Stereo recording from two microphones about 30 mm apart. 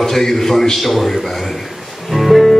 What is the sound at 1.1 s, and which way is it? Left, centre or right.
Speech, centre.